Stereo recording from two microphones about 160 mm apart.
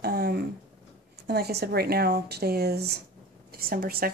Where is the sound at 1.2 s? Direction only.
90° right.